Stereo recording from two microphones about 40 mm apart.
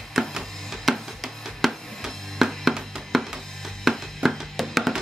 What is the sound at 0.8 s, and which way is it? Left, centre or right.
Drum, centre.